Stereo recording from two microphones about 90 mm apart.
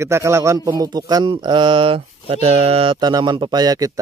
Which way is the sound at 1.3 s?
60° right (ahead or behind).